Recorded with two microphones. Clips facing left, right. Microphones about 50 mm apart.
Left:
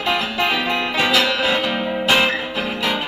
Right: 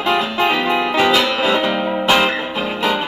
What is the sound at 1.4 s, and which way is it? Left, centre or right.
Music, right.